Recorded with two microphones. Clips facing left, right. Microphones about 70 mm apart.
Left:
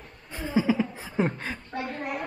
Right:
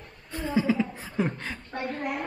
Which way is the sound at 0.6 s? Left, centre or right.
Centre.